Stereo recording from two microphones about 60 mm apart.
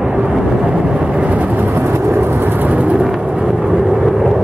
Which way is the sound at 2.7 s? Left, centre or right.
Right.